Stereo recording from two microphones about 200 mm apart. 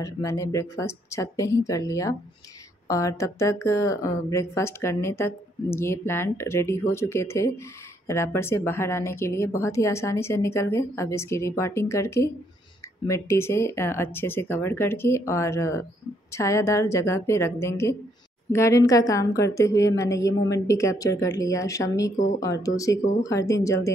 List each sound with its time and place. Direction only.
0.0 s a woman's voice: 15° left (ahead or behind)
22.1 s speech: 40° left (ahead or behind)
22.4 s a woman's voice: 15° left (ahead or behind)